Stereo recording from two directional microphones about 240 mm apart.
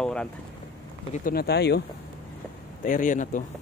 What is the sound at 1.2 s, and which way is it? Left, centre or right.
Speech, left.